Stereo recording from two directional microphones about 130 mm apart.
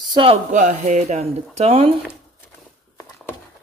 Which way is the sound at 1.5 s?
50° right (ahead or behind).